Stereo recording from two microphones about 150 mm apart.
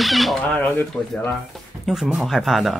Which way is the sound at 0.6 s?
15° left (ahead or behind).